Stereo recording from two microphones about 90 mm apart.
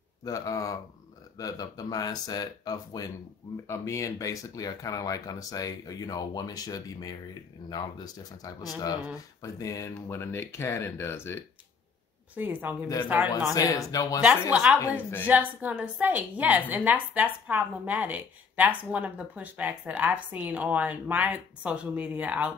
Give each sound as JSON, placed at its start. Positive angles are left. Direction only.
{"t": 0.2, "sound": "speech", "side_deg": 40}
{"t": 3.6, "sound": "speech", "side_deg": 30}
{"t": 9.4, "sound": "speech", "side_deg": 35}
{"t": 12.4, "sound": "speech", "side_deg": -20}
{"t": 13.5, "sound": "speech", "side_deg": 40}
{"t": 14.2, "sound": "a woman's voice", "side_deg": -15}
{"t": 14.8, "sound": "speech", "side_deg": 30}
{"t": 15.2, "sound": "a woman's voice", "side_deg": -15}